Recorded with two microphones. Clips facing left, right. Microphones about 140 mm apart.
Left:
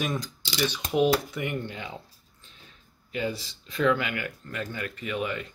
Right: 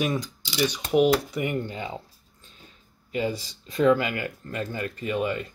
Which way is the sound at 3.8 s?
35° right (ahead or behind).